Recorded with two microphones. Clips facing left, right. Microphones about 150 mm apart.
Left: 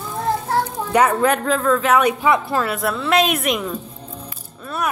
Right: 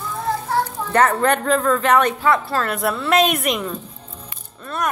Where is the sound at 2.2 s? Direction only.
15° left (ahead or behind).